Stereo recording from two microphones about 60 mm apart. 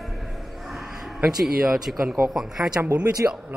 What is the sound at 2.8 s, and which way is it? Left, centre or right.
Speech, right.